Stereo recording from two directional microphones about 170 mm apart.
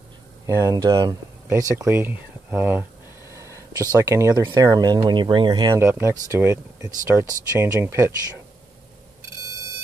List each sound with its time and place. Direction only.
0.5 s speech: 20° right (ahead or behind)